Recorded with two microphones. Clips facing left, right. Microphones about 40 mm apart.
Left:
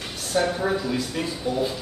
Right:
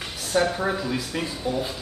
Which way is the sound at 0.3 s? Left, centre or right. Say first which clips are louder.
Even; centre.